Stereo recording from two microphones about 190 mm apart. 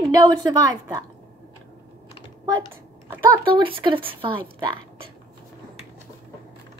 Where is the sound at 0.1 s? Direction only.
20° right (ahead or behind).